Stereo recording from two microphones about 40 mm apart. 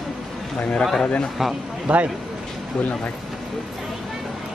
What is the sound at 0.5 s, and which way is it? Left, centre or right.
Speech, left.